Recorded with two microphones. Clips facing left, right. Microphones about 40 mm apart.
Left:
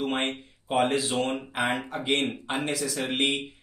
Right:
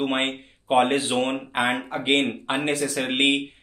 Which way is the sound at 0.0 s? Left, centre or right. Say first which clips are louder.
Right 4 dB; right.